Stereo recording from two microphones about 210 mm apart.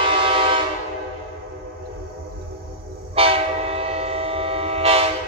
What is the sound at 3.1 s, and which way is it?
Train, 25° right (ahead or behind).